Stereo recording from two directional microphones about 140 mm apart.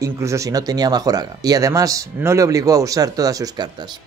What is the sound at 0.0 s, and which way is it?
Speech, 20° right (ahead or behind).